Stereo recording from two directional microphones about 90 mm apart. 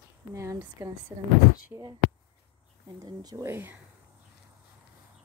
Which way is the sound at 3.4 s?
25° right (ahead or behind).